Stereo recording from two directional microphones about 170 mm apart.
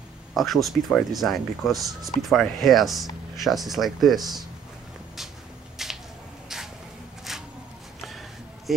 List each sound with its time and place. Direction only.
0.3 s speech: centre (ahead or behind)
5.8 s a sound: centre (ahead or behind)
8.7 s speech: centre (ahead or behind)